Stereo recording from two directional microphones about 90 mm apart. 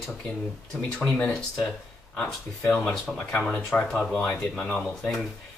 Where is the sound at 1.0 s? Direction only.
20° left (ahead or behind).